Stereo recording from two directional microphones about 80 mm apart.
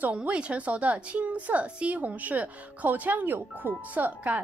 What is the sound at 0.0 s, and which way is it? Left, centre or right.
A woman's voice, centre.